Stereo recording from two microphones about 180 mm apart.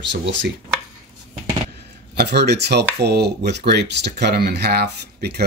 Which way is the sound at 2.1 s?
65° right (ahead or behind).